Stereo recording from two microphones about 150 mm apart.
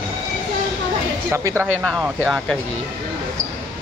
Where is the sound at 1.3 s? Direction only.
20° right (ahead or behind).